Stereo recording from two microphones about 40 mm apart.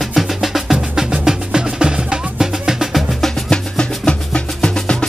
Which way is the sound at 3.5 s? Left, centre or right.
Left.